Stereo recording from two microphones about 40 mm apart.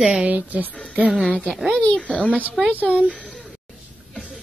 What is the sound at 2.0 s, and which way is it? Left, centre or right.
Speech, left.